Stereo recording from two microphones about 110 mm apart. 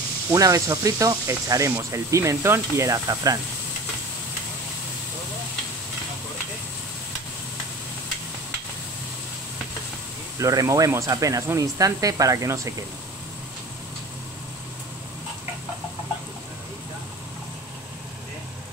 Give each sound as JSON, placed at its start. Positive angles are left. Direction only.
{"t": 0.3, "sound": "speech", "side_deg": -30}
{"t": 10.4, "sound": "speech", "side_deg": -30}